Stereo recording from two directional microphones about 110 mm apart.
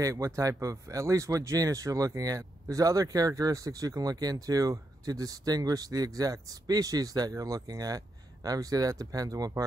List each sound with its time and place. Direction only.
0.0 s speech: 30° right (ahead or behind)